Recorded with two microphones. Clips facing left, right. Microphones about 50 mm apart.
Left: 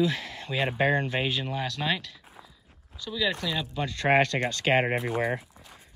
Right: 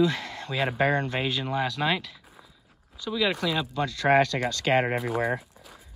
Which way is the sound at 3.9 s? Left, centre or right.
Left.